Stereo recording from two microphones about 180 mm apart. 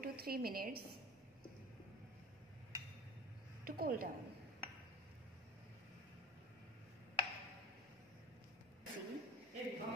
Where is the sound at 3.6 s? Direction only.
55° right (ahead or behind).